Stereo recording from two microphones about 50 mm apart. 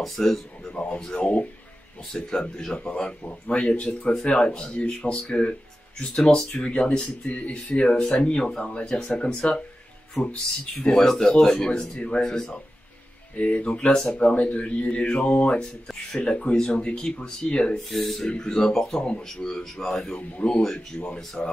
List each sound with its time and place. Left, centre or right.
0.0 s speech: centre
0.7 s speech: left
2.7 s speech: left
3.0 s speech: centre
13.4 s speech: left
17.9 s speech: centre
20.2 s speech: left
21.2 s speech: centre